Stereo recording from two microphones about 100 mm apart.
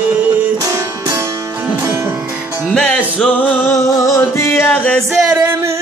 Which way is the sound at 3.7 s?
30° left (ahead or behind).